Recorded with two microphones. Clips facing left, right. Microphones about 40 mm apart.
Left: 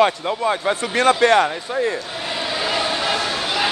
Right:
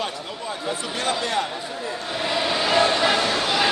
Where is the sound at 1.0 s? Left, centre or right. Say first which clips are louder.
Left 11 dB; left.